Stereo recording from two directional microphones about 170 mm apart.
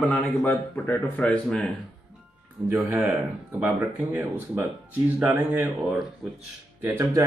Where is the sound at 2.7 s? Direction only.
10° right (ahead or behind).